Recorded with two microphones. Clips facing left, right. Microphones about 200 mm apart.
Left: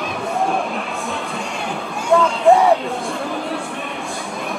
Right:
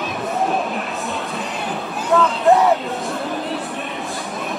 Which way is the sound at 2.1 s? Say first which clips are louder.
Left 2 dB; 5° right (ahead or behind).